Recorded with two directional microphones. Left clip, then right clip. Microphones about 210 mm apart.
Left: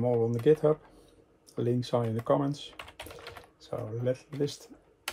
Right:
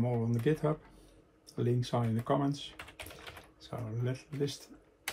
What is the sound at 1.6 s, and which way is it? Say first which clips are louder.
Speech: left 4 dB; 50° left (ahead or behind).